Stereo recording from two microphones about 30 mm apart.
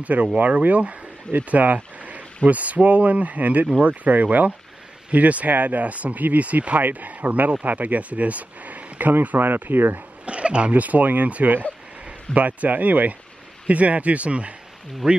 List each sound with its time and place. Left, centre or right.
0.0 s speech: right
6.8 s speech: right
10.2 s speech: right
10.7 s speech: right
13.7 s speech: right
15.0 s speech: centre